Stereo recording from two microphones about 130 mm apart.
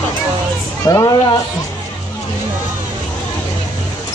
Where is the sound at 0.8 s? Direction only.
30° left (ahead or behind).